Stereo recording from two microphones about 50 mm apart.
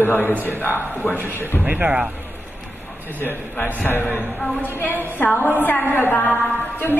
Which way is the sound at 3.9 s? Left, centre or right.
Left.